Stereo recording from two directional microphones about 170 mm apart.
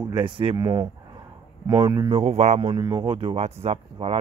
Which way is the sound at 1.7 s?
25° right (ahead or behind).